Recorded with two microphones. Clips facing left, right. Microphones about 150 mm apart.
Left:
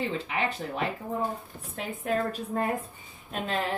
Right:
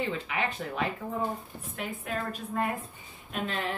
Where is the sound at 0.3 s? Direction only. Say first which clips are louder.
Left 2 dB; 35° left (ahead or behind).